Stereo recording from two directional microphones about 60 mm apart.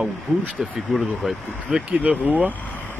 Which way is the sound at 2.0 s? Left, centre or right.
Right.